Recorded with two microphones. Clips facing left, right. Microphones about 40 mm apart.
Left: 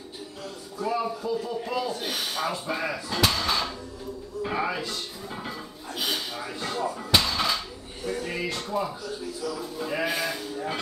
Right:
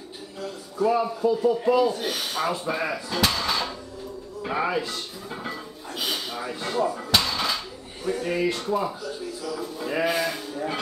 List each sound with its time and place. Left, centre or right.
0.7 s speech: centre
2.0 s speech: centre
4.4 s music: centre
4.6 s a sound: centre
6.4 s speech: centre
7.1 s a sound: centre
8.0 s speech: centre